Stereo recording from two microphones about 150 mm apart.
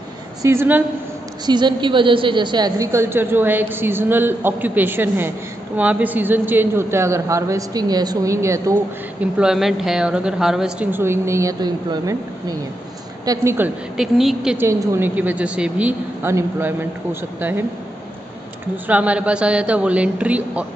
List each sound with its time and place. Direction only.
0.4 s a woman's voice: 15° right (ahead or behind)
1.4 s a woman's voice: 30° right (ahead or behind)
9.2 s a woman's voice: 5° right (ahead or behind)
13.9 s a woman's voice: centre (ahead or behind)
14.6 s a woman's voice: 15° right (ahead or behind)
18.9 s a woman's voice: 10° right (ahead or behind)